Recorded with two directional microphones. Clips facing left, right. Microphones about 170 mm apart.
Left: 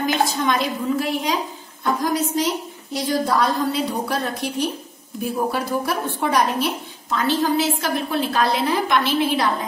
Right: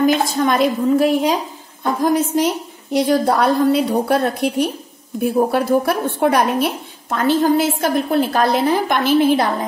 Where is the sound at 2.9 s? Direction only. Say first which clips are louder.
Right 6 dB; 65° right (ahead or behind).